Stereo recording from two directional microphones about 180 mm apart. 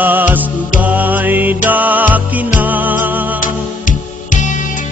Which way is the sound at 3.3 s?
45° left (ahead or behind).